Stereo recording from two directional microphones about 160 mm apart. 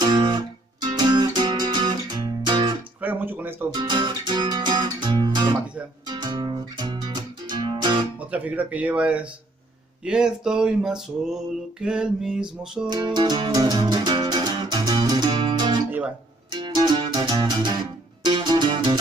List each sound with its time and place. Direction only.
0.0 s music: 25° right (ahead or behind)
3.0 s a sound: 10° right (ahead or behind)
3.7 s music: 30° right (ahead or behind)
8.2 s speech: 10° right (ahead or behind)
10.0 s a sound: 5° right (ahead or behind)
12.8 s music: 25° right (ahead or behind)